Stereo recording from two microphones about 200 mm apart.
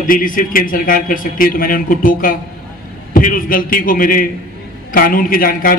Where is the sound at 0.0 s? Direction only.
45° left (ahead or behind).